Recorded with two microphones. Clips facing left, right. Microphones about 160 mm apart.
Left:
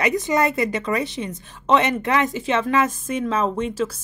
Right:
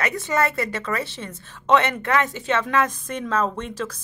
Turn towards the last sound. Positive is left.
turn(degrees=10)  # may be behind; listen again after turning